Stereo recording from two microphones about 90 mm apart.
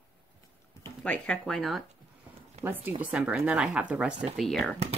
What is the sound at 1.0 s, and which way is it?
Speech, 10° left (ahead or behind).